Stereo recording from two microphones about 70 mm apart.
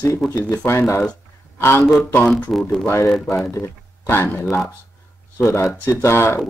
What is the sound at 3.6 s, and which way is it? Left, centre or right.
Speech, left.